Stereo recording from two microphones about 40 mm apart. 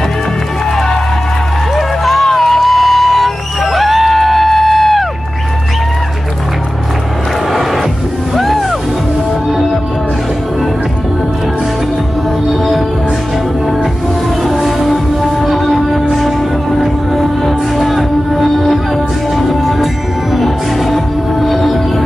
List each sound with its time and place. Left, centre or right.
1.8 s music: centre
8.4 s music: centre
14.5 s music: centre